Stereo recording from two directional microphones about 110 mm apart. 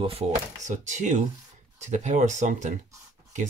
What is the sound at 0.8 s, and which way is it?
Speech, 90° right.